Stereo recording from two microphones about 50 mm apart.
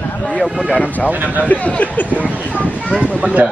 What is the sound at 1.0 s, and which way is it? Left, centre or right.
Speech, right.